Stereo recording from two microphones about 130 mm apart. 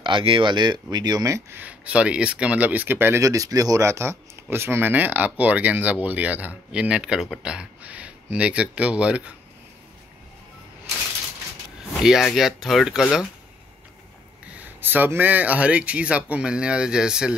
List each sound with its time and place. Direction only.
0.0 s speech: 40° right (ahead or behind)
1.6 s speech: 10° right (ahead or behind)
12.0 s speech: 5° right (ahead or behind)
14.4 s speech: 10° right (ahead or behind)